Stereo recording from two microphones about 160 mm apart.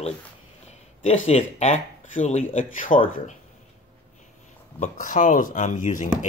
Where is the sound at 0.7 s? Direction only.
40° left (ahead or behind).